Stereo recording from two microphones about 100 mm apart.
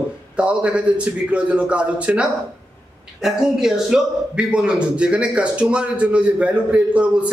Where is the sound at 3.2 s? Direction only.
5° right (ahead or behind).